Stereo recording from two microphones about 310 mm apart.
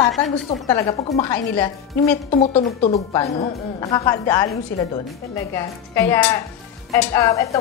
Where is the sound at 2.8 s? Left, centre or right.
Centre.